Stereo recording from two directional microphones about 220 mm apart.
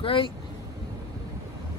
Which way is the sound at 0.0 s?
25° left (ahead or behind).